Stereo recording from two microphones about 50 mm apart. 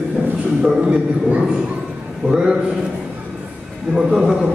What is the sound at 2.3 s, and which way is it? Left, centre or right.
Speech, centre.